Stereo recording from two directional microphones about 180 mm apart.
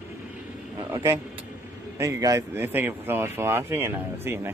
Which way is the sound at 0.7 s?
20° right (ahead or behind).